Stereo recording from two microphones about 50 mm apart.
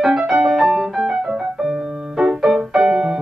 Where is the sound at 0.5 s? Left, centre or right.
Centre.